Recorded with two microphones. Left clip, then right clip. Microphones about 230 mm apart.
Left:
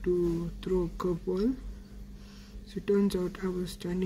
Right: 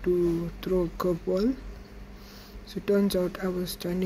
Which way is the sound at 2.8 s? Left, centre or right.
Centre.